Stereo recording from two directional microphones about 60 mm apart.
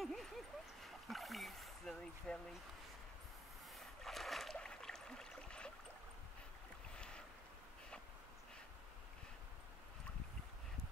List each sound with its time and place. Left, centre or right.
0.0 s dog: centre
0.8 s splash: centre
2.3 s speech: centre
3.7 s boat: centre
4.6 s a sound: centre
7.0 s boat: centre